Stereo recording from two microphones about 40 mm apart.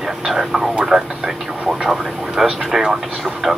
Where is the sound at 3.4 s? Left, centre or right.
Centre.